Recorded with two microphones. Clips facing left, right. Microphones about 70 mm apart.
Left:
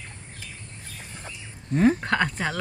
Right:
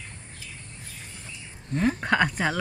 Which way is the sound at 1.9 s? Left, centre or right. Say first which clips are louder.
Right 1 dB; centre.